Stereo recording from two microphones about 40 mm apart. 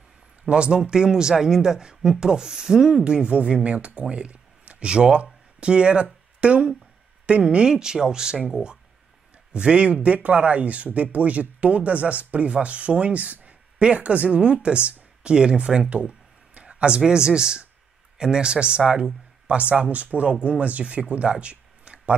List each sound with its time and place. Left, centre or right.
0.5 s speech: right
3.0 s speech: right
9.5 s speech: right
10.0 s speech: right
19.4 s speech: right